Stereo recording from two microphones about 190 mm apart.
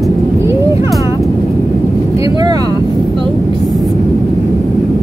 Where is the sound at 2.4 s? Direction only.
20° right (ahead or behind).